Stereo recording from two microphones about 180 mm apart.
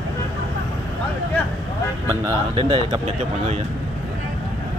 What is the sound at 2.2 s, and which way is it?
Speech, 30° right (ahead or behind).